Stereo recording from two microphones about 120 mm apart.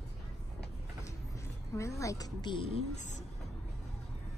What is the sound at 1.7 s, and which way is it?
Speech, 25° left (ahead or behind).